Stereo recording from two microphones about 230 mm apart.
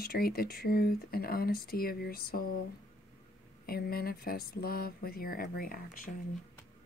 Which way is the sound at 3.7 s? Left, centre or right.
Left.